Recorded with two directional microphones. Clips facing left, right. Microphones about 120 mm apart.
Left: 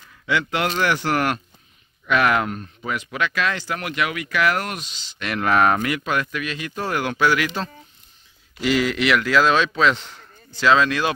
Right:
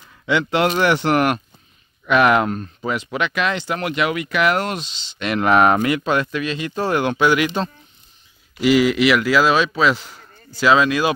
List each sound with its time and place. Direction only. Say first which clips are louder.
0.3 s speech: right 5 dB; 25° right (ahead or behind)
2.4 s speech: right 5 dB; 35° right (ahead or behind)
8.5 s a man's voice: right 5 dB; 10° right (ahead or behind)